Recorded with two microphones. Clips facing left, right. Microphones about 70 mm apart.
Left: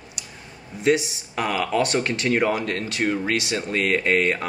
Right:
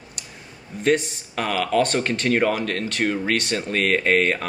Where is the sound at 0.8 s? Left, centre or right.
Centre.